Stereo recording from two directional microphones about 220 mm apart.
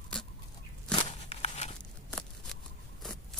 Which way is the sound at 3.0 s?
Centre (ahead or behind).